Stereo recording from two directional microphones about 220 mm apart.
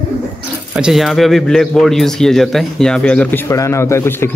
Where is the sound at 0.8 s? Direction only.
Centre (ahead or behind).